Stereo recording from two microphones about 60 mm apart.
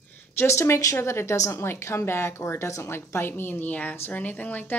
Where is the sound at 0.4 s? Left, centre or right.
Left.